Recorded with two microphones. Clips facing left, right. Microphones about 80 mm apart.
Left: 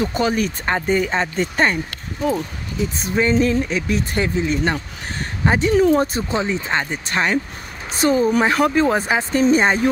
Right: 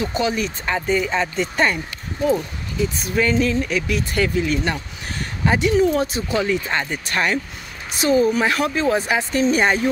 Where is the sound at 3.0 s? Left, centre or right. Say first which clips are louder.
Left 3 dB; left.